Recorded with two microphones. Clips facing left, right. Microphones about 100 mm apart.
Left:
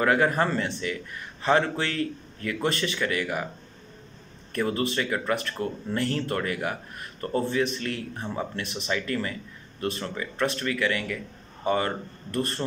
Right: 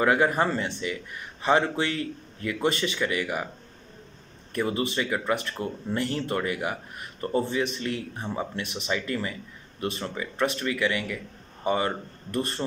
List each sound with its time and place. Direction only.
0.0 s speech: 15° right (ahead or behind)
4.5 s a man's voice: 10° right (ahead or behind)